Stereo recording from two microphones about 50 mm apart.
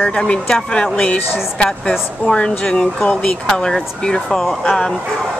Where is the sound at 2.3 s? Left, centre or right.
Centre.